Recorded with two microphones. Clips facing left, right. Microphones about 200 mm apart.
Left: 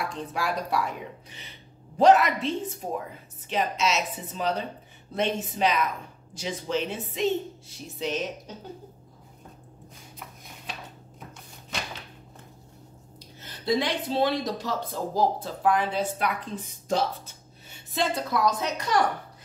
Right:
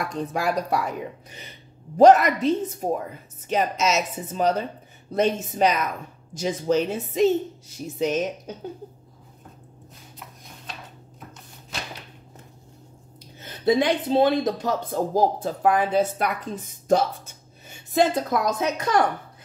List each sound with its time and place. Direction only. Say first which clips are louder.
0.1 s speech: right 5 dB; 45° right (ahead or behind)
2.0 s speech: right 5 dB; 45° right (ahead or behind)
13.4 s a woman's voice: right 6 dB; 50° right (ahead or behind)